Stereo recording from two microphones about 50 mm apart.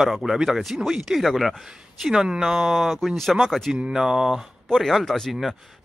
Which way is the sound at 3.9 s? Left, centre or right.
Centre.